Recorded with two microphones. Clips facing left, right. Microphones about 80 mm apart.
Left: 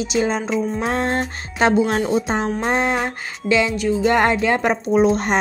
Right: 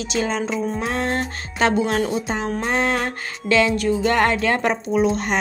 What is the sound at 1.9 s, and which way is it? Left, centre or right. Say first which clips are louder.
Speech: left 2 dB; left.